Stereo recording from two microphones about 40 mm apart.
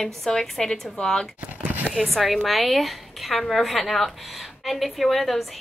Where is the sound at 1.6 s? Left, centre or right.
Right.